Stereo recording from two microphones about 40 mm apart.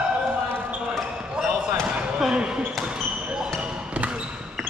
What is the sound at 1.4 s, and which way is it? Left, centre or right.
Basketball bounce, right.